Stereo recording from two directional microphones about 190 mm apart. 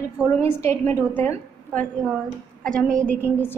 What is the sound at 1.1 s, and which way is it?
Speech, 10° left (ahead or behind).